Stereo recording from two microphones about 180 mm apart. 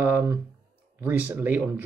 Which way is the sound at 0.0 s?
10° right (ahead or behind).